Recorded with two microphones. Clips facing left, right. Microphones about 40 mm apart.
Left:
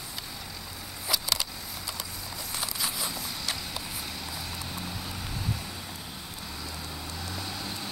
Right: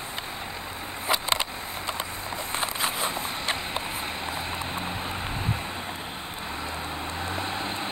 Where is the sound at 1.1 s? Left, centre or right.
Right.